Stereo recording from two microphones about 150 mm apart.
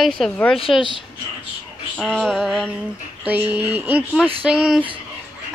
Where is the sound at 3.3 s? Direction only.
10° right (ahead or behind).